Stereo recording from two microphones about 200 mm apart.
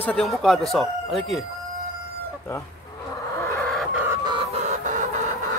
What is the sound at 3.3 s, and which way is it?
Chicken, 10° left (ahead or behind).